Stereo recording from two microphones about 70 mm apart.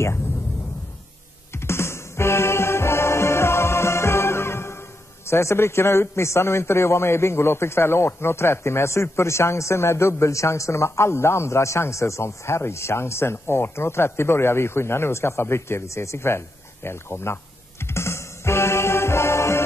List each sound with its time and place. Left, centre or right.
1.5 s music: left
5.2 s a man's voice: left